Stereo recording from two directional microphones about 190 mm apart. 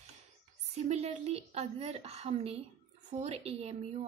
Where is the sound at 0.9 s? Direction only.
35° right (ahead or behind).